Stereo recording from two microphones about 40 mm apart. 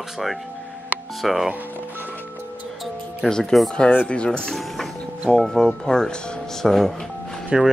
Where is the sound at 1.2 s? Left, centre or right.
Centre.